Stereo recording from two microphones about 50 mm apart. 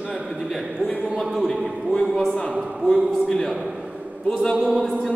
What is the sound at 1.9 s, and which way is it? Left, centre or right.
Speech, centre.